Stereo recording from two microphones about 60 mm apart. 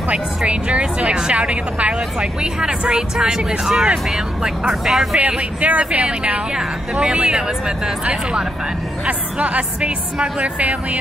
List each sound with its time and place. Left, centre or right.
0.1 s speech: centre
5.2 s speech: right